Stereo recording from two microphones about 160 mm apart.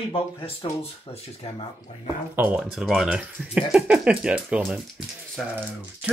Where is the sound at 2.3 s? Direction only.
10° right (ahead or behind).